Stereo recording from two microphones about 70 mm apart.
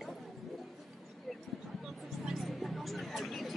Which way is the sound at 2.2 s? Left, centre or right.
Centre.